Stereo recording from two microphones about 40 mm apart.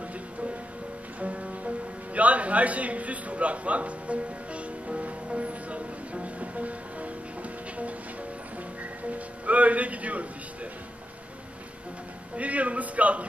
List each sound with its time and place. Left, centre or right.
1.2 s music: right
9.5 s a man's voice: right
12.4 s a man's voice: right